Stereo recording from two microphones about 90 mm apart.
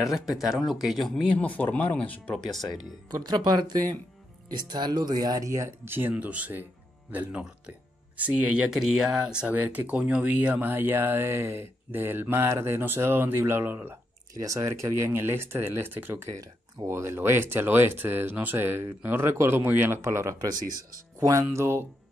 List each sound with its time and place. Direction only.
0.0 s speech: 5° right (ahead or behind)
1.3 s speech: 15° left (ahead or behind)
3.2 s speech: 50° right (ahead or behind); by 13.9 s 25° right (ahead or behind)
14.3 s speech: 35° right (ahead or behind)
20.3 s speech: 45° right (ahead or behind); by 21.8 s 30° right (ahead or behind)